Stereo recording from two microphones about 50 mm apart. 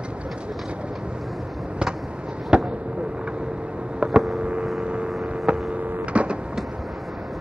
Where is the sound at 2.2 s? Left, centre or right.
Centre.